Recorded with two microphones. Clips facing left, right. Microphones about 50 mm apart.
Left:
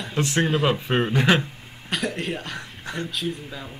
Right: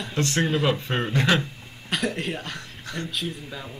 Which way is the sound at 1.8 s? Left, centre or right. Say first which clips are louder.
Even; centre.